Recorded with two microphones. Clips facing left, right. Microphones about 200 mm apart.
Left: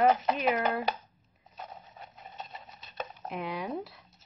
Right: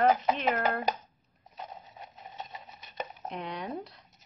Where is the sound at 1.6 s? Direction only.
15° right (ahead or behind).